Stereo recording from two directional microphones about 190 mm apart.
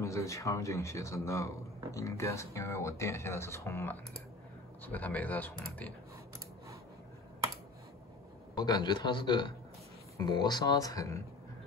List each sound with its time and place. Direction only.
0.0 s speech: 15° left (ahead or behind)
8.5 s speech: 20° left (ahead or behind)